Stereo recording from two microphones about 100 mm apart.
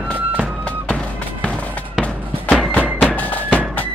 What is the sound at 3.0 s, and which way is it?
Music, 15° left (ahead or behind).